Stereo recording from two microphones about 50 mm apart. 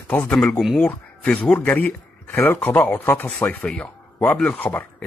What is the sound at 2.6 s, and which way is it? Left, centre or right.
A man's voice, left.